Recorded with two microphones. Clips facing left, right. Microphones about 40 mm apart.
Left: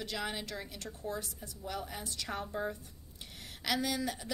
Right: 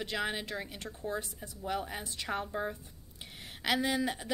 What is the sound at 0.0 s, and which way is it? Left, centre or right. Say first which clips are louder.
A woman's voice: right 3 dB; right.